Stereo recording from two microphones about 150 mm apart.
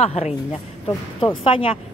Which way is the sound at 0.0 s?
45° left (ahead or behind).